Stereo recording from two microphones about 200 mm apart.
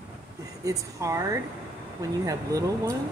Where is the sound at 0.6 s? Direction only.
15° right (ahead or behind).